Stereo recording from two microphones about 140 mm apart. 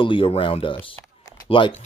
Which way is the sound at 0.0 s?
40° left (ahead or behind).